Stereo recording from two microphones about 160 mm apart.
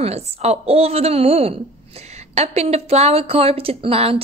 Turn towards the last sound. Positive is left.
turn(degrees=-35)  # may be behind; listen again after turning